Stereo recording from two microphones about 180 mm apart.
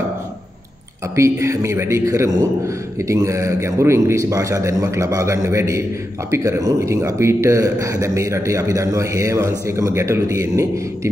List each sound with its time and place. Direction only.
1.1 s speech: 15° right (ahead or behind)